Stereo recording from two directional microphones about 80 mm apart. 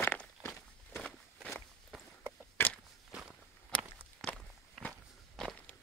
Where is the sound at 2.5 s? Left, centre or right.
Left.